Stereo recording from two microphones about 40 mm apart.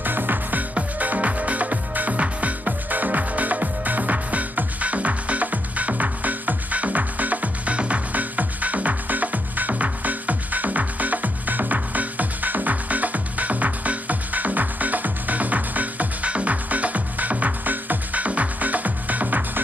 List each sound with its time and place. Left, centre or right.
0.0 s music: right